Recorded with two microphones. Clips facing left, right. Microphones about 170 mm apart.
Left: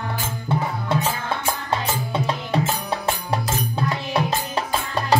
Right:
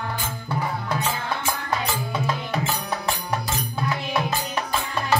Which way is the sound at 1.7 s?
30° left (ahead or behind).